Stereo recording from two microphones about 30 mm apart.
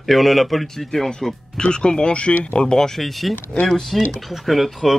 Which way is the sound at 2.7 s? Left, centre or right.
Centre.